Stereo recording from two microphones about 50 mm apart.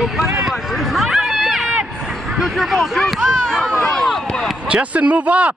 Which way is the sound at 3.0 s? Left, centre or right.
Centre.